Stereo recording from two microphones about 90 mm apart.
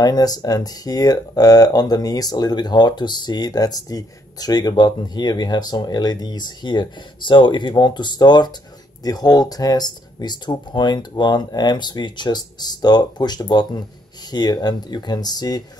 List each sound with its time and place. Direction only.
0.0 s speech: 45° left (ahead or behind)